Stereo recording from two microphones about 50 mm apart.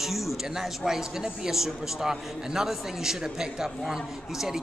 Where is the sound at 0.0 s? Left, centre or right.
Centre.